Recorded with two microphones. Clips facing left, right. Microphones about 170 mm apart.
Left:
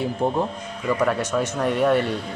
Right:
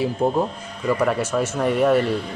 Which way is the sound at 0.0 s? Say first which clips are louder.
Right 2 dB; 5° right (ahead or behind).